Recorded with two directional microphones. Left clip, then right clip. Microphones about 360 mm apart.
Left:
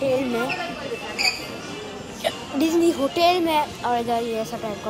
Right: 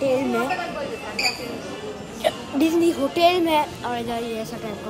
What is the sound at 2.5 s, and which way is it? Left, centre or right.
A woman's voice, centre.